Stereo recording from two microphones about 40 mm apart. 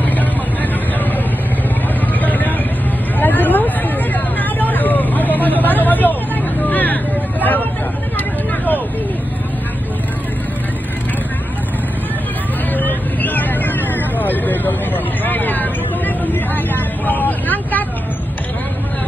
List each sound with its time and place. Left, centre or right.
0.0 s vehicle: left
2.1 s vehicle: left
12.7 s vehicle: left